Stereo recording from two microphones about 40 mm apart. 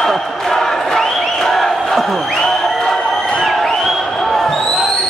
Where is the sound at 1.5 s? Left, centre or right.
Centre.